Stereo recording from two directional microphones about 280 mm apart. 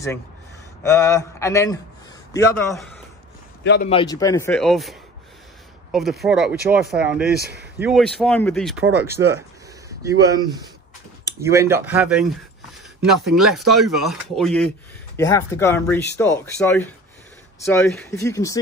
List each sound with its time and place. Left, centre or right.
0.8 s speech: centre
3.6 s a man's voice: left
3.9 s speech: centre
9.0 s speech: centre
13.3 s speech: centre